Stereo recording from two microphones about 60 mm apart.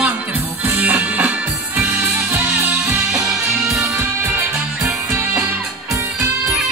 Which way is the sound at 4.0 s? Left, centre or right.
Right.